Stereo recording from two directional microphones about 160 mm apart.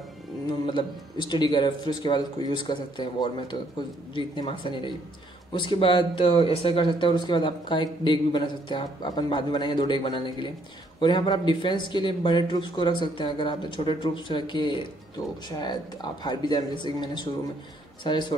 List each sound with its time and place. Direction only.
0.7 s speech: 30° left (ahead or behind)